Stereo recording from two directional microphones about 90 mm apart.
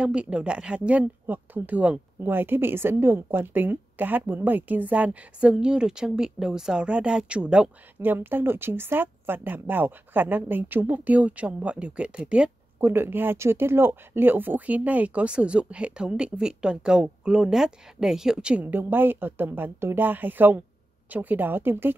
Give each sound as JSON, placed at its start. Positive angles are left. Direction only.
{"t": 0.0, "sound": "speech", "side_deg": -10}
{"t": 8.0, "sound": "speech", "side_deg": -25}
{"t": 12.8, "sound": "speech", "side_deg": -25}